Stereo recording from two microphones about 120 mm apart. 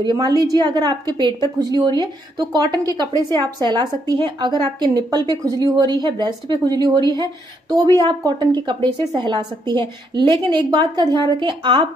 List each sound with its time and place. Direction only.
0.4 s a woman's voice: 35° right (ahead or behind)